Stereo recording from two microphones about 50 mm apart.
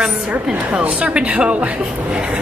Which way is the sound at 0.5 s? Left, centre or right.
Centre.